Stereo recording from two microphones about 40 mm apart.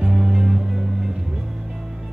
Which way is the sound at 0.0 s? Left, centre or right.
Right.